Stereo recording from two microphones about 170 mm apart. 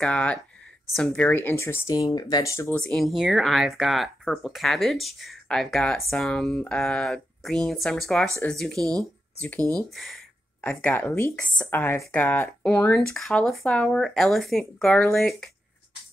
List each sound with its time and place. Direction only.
0.0 s speech: 5° left (ahead or behind)
2.7 s speech: 5° left (ahead or behind)
9.6 s speech: 20° right (ahead or behind)
9.9 s speech: centre (ahead or behind)